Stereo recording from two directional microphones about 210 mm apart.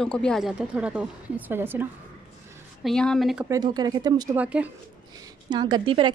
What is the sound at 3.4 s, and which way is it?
Speech, 20° right (ahead or behind).